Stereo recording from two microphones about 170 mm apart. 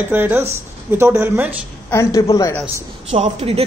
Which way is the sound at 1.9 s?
20° left (ahead or behind).